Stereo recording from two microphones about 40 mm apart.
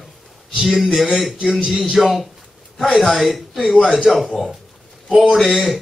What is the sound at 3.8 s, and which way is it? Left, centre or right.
Speech, centre.